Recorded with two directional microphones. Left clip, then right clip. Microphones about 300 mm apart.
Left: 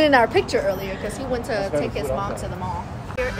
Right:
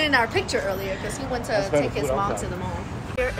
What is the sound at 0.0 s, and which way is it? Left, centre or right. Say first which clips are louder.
Speech: left 5 dB; left.